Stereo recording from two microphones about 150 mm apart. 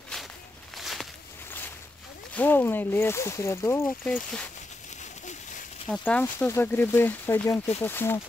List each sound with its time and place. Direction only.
0.7 s walk: centre (ahead or behind)
2.3 s speech: 15° left (ahead or behind)
4.0 s speech: 5° left (ahead or behind)
5.9 s speech: 10° left (ahead or behind)